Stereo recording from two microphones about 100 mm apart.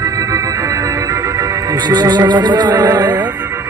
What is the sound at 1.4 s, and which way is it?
Music, 45° right (ahead or behind).